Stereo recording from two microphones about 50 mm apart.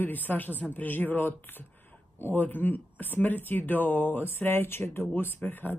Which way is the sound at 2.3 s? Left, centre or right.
Left.